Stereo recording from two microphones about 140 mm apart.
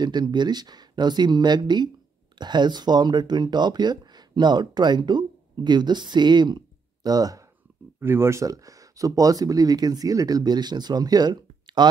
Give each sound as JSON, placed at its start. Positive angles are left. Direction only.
{"t": 0.0, "sound": "speech", "side_deg": -30}